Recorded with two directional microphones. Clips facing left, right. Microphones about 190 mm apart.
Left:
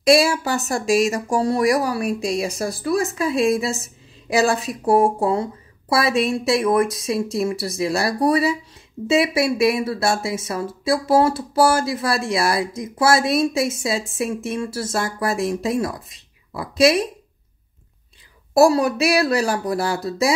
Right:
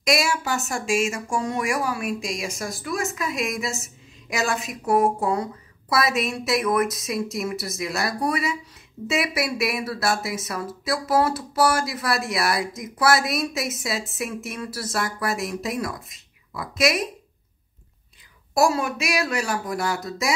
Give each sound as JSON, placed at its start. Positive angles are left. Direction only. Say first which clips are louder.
{"t": 0.0, "sound": "speech", "louder": "left 7 dB", "side_deg": 30}
{"t": 18.5, "sound": "speech", "louder": "left 6 dB", "side_deg": 35}